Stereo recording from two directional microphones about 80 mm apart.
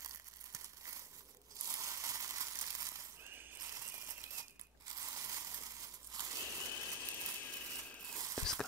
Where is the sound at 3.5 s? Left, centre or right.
Right.